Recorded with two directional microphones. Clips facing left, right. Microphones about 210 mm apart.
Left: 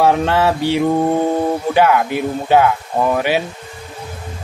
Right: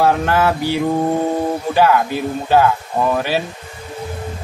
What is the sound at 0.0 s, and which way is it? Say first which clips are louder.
Mantra: left 1 dB; 20° left (ahead or behind).